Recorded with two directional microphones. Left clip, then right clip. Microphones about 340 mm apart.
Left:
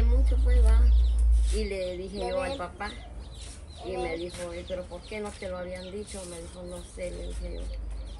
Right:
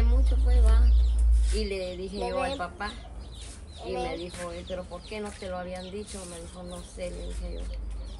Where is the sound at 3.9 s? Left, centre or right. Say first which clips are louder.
Even; centre.